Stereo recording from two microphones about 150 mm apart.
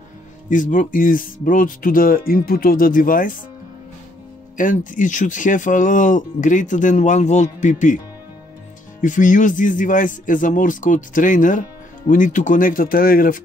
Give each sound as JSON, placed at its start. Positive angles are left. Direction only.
{"t": 0.5, "sound": "speech", "side_deg": 60}
{"t": 4.6, "sound": "speech", "side_deg": 60}
{"t": 9.0, "sound": "speech", "side_deg": 60}